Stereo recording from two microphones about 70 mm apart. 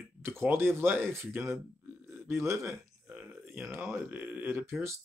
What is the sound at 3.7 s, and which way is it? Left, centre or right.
Speech, right.